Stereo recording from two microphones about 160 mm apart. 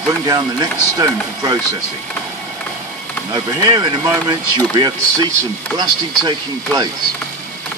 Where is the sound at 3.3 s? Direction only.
25° right (ahead or behind).